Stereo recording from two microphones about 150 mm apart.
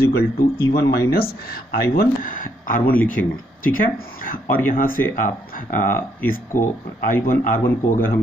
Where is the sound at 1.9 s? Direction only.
70° left (ahead or behind).